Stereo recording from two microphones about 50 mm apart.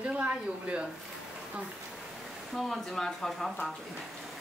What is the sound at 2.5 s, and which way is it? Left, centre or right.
Speech, centre.